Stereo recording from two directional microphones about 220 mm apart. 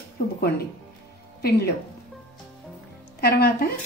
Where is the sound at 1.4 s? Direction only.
45° left (ahead or behind).